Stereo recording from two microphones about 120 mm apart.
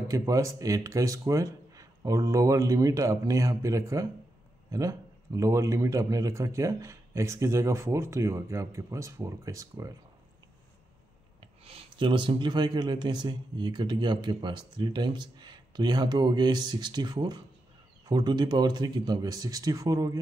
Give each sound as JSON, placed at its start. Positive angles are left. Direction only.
{"t": 0.1, "sound": "a man's voice", "side_deg": -25}
{"t": 11.6, "sound": "speech", "side_deg": -50}